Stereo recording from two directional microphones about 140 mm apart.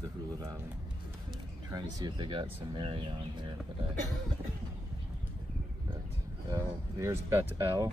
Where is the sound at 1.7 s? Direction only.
30° right (ahead or behind).